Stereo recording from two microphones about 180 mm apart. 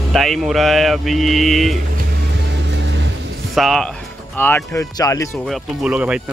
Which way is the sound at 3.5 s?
Centre (ahead or behind).